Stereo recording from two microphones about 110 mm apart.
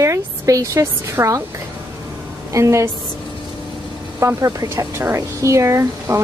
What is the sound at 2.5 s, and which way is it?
Speech, 25° right (ahead or behind).